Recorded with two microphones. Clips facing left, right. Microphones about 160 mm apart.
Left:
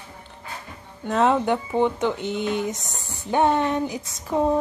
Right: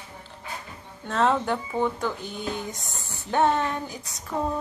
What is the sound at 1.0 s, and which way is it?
Speech, 15° left (ahead or behind).